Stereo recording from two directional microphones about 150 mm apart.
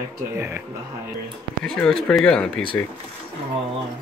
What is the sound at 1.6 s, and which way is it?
Speech, 5° left (ahead or behind).